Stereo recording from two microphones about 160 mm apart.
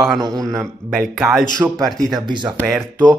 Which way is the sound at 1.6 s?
15° right (ahead or behind).